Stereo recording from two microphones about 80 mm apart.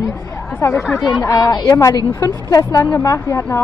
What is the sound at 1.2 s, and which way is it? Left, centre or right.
A woman's voice, left.